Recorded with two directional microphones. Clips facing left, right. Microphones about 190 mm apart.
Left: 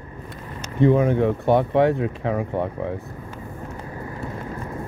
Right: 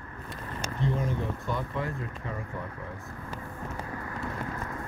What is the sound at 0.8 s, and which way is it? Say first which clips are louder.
Speech: left 14 dB; 65° left (ahead or behind).